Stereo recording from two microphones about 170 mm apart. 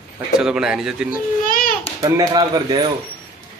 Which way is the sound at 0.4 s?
5° right (ahead or behind).